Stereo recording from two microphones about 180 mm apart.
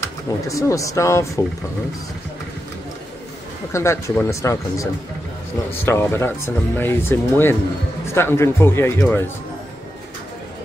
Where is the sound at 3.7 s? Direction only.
15° left (ahead or behind).